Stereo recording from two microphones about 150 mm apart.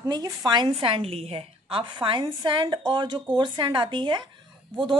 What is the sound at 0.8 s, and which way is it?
A woman's voice, 40° right (ahead or behind).